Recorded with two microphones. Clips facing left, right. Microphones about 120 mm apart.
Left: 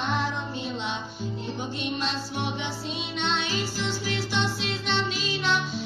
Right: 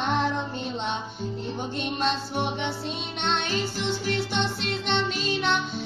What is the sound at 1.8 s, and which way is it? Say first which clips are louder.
Music: right 4 dB; 50° right (ahead or behind).